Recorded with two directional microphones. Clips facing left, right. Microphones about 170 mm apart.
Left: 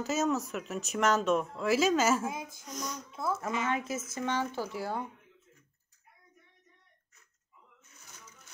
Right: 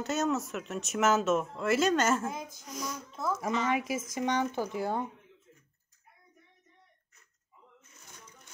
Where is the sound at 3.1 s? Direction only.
10° left (ahead or behind).